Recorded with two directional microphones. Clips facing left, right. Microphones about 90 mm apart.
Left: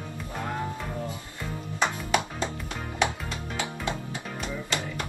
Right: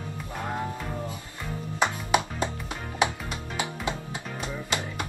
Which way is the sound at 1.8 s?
20° right (ahead or behind).